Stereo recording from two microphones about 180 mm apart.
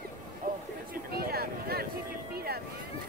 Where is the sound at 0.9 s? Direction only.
55° right (ahead or behind).